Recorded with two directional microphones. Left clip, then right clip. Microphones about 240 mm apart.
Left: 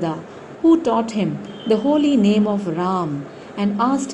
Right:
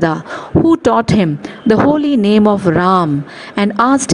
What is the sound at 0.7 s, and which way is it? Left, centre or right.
A woman's voice, right.